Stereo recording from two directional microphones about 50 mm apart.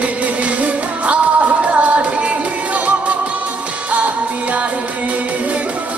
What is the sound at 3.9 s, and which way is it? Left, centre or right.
Music, right.